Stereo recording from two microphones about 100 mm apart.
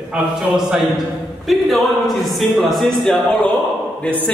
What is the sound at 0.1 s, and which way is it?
A man's voice, 10° right (ahead or behind).